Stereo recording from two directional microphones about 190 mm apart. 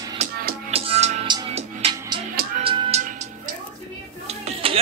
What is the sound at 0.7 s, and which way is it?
Music, 30° right (ahead or behind).